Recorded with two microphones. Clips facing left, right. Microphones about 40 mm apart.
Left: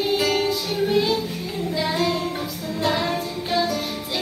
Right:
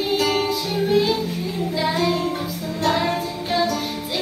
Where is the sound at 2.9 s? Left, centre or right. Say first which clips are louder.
Right 3 dB; centre.